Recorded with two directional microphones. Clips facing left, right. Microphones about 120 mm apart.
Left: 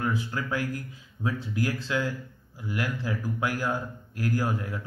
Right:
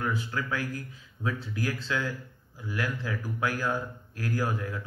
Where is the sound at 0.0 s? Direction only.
15° left (ahead or behind).